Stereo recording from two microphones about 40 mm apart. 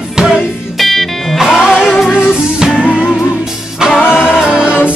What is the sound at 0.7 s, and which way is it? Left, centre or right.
Music, centre.